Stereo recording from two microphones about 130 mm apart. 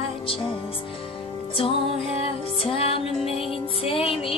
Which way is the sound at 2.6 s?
45° left (ahead or behind).